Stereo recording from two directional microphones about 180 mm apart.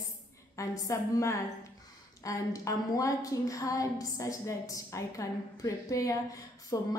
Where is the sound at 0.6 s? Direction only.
20° left (ahead or behind).